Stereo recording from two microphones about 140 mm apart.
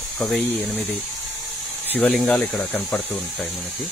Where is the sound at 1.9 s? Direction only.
10° left (ahead or behind).